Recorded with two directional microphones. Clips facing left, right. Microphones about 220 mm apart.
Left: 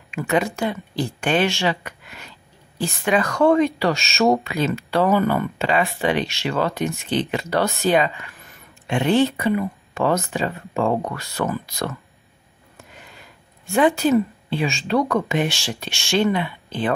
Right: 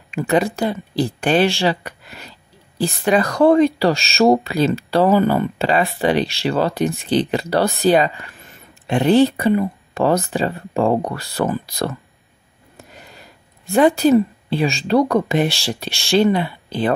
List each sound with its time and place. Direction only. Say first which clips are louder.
0.1 s speech: right 4 dB; 35° right (ahead or behind)